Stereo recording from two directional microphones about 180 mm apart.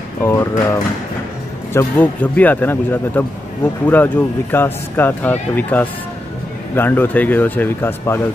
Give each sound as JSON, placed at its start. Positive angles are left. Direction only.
{"t": 0.2, "sound": "speech", "side_deg": 15}